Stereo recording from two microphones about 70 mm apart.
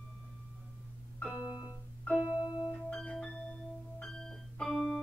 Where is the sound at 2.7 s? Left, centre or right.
Centre.